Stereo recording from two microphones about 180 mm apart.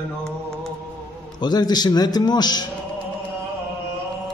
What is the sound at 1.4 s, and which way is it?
Speech, 20° left (ahead or behind).